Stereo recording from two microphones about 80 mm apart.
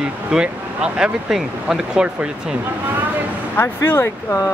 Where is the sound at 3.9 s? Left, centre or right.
Left.